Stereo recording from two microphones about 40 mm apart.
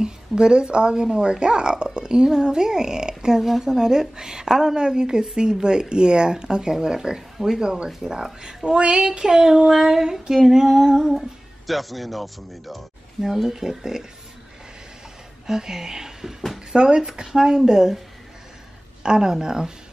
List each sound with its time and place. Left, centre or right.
0.0 s speech: right
7.6 s speech: centre
15.4 s speech: centre
16.7 s speech: right
19.0 s speech: centre